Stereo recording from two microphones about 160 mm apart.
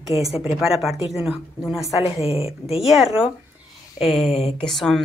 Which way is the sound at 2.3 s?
40° left (ahead or behind).